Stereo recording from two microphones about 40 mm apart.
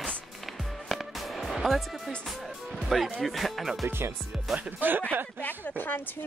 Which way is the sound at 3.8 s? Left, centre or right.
Right.